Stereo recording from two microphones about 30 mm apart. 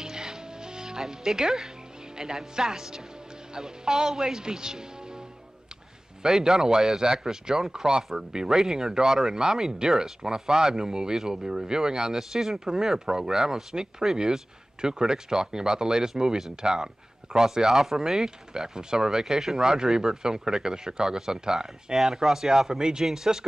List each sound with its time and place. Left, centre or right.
0.0 s music: centre
2.1 s speech: right
6.2 s speech: centre
17.6 s speech: centre